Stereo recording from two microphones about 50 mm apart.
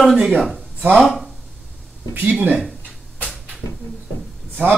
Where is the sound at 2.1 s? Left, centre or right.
Right.